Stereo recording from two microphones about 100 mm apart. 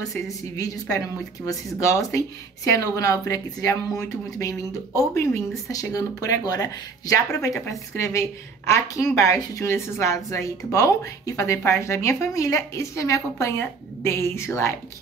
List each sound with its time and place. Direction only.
0.0 s a woman's voice: 35° left (ahead or behind)